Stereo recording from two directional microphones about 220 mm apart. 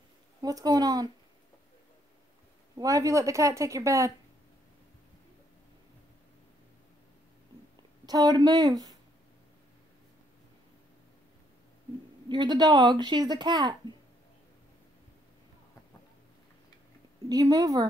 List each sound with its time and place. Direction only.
0.4 s speech: 15° right (ahead or behind)
2.8 s speech: 15° right (ahead or behind)
8.0 s speech: 15° right (ahead or behind)
12.3 s a woman's voice: 20° right (ahead or behind)
17.3 s speech: 15° right (ahead or behind)